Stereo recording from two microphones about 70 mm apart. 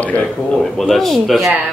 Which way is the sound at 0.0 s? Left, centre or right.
Left.